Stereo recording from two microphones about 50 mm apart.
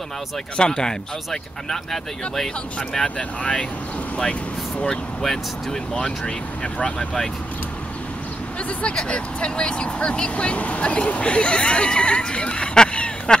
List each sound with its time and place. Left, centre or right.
0.6 s speech: centre
3.2 s speech: left
8.6 s speech: left